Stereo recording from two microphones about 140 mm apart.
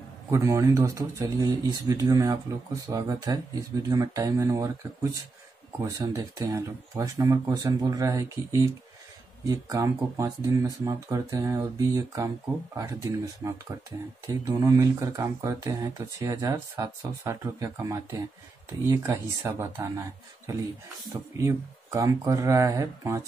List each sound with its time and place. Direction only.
0.3 s speech: 20° right (ahead or behind)